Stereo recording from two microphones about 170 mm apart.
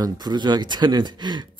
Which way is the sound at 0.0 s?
25° right (ahead or behind).